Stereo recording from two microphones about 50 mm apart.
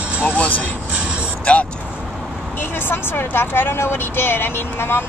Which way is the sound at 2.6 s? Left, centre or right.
Left.